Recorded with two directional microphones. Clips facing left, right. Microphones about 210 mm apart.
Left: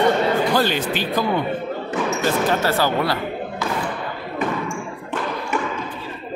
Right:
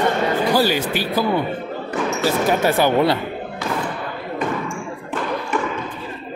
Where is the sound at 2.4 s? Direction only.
15° right (ahead or behind).